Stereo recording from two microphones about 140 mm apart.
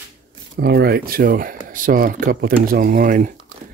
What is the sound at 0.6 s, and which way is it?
Speech, 90° right.